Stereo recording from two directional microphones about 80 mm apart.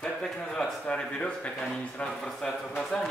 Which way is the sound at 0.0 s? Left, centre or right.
Centre.